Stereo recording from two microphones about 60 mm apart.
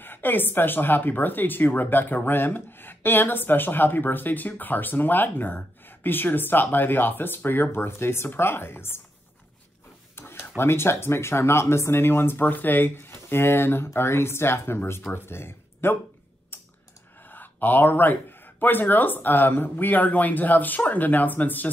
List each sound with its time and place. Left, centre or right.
0.0 s speech: left
10.1 s a sound: left
10.6 s speech: left
16.5 s clicking: left
17.3 s speech: left